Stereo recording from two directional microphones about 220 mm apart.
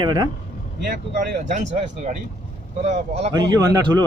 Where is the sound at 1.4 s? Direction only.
35° right (ahead or behind).